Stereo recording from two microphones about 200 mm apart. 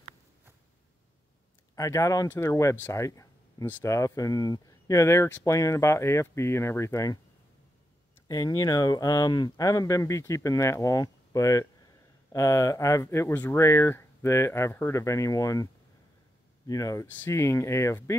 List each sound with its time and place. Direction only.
1.8 s speech: 15° left (ahead or behind)
8.3 s speech: 15° left (ahead or behind)